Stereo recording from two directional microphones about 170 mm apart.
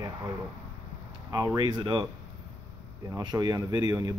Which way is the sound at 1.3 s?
20° right (ahead or behind).